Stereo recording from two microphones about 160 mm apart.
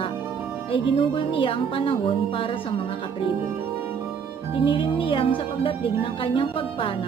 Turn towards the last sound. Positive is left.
turn(degrees=35)  # may be behind; listen again after turning